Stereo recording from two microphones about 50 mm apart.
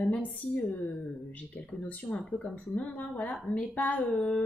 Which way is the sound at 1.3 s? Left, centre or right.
Left.